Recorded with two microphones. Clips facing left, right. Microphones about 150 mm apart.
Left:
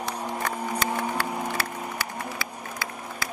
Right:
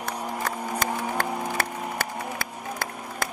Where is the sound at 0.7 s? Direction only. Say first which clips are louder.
Right 1 dB; 50° right (ahead or behind).